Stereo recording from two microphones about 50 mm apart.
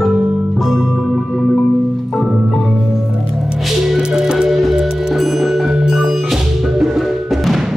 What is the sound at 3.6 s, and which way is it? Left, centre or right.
Music, centre.